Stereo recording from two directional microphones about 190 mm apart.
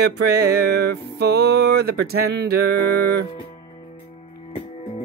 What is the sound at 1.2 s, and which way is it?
Music, 60° right (ahead or behind).